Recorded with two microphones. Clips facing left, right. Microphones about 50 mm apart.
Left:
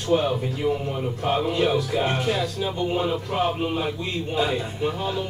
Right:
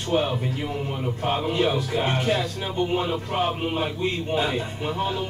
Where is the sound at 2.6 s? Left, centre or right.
Centre.